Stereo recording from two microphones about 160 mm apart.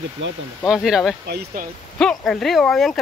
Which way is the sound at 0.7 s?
5° right (ahead or behind).